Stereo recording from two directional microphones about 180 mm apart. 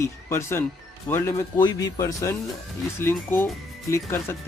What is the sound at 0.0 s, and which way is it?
Speech, 15° left (ahead or behind).